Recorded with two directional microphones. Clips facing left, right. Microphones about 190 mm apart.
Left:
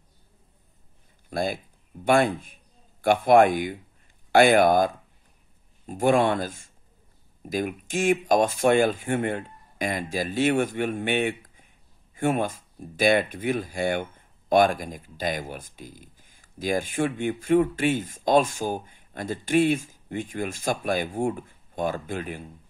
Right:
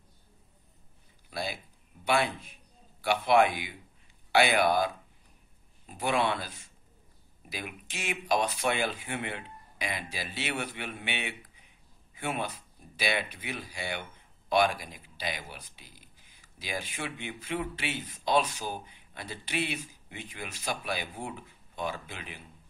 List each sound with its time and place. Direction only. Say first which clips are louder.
1.3 s a man's voice: left 9 dB; 50° left (ahead or behind)